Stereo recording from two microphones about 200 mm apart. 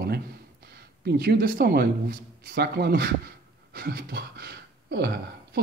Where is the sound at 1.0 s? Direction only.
50° right (ahead or behind).